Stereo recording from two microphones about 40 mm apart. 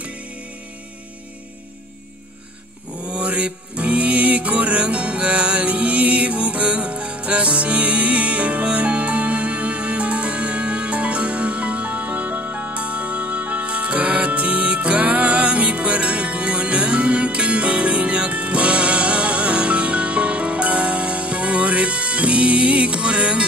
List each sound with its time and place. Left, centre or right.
3.0 s music: right